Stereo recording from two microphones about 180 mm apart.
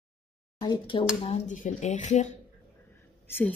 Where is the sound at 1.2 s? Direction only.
40° left (ahead or behind).